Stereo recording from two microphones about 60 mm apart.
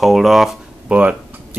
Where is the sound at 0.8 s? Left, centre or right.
Right.